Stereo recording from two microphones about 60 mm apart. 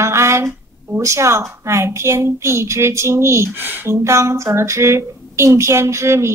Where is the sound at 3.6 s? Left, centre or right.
Right.